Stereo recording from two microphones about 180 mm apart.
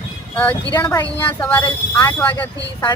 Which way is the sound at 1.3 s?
15° left (ahead or behind).